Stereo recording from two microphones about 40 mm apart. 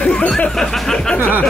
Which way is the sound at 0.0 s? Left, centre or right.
Left.